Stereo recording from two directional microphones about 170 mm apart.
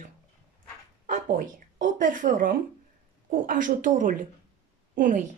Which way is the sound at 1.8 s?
50° right (ahead or behind).